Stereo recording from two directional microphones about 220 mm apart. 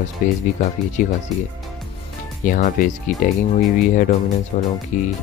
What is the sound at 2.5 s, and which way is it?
Speech, 35° left (ahead or behind).